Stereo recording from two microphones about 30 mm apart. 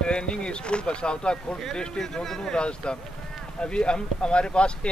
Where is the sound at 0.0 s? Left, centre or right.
Left.